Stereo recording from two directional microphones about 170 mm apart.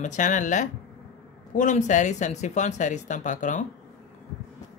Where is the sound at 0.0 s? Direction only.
45° left (ahead or behind).